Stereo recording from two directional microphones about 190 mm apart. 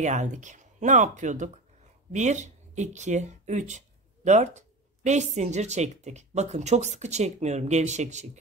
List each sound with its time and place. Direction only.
0.0 s speech: 40° right (ahead or behind)